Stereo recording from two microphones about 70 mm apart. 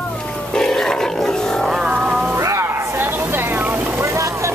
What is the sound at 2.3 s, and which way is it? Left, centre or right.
Vehicle, right.